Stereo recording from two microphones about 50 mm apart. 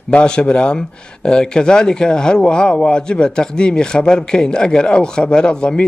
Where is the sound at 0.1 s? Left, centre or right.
Left.